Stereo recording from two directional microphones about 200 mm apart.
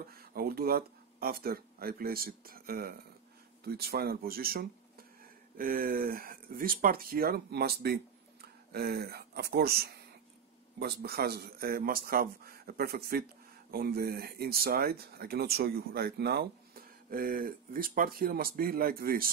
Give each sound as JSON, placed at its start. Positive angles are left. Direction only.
{"t": 0.1, "sound": "speech", "side_deg": -50}